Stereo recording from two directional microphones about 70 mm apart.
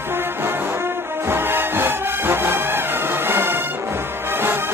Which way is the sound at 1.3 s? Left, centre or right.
Right.